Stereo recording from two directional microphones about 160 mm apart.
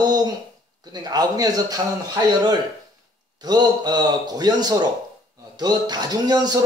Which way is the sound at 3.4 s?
25° right (ahead or behind).